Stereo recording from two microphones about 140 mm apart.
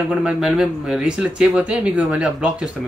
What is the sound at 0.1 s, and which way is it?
Speech, 5° right (ahead or behind).